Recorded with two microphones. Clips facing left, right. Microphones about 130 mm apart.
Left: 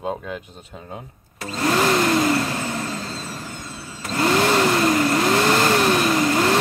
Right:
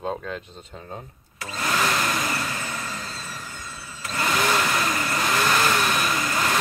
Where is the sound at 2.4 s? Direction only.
40° left (ahead or behind).